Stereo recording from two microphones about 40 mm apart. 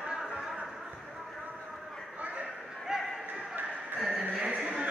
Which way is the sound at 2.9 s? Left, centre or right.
Centre.